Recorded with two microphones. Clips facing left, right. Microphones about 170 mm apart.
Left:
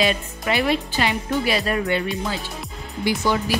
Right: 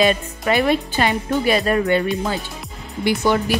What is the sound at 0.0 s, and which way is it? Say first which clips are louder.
Speech: right 4 dB; 45° right (ahead or behind).